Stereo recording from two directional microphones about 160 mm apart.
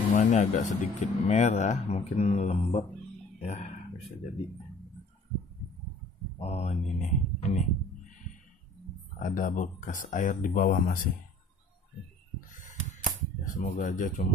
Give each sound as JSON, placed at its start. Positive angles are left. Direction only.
{"t": 0.1, "sound": "speech", "side_deg": 45}
{"t": 6.3, "sound": "speech", "side_deg": 40}
{"t": 9.2, "sound": "speech", "side_deg": 55}
{"t": 12.4, "sound": "a sound", "side_deg": 55}
{"t": 13.5, "sound": "speech", "side_deg": 50}